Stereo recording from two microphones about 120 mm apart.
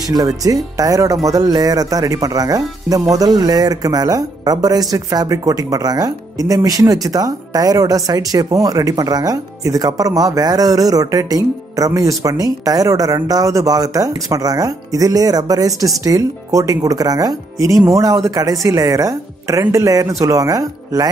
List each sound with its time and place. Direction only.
0.1 s speech: 30° right (ahead or behind)